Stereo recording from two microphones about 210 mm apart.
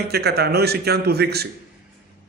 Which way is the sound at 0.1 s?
50° right (ahead or behind).